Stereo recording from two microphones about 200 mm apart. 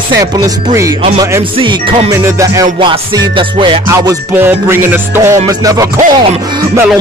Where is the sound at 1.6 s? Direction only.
25° right (ahead or behind).